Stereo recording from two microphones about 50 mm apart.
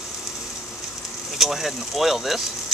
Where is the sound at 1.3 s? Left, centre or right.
Centre.